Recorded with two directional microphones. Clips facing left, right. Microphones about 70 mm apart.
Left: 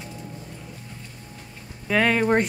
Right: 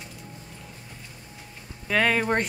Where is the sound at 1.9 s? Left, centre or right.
Centre.